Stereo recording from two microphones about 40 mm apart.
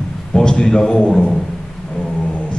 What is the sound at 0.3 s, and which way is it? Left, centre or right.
A man's voice, centre.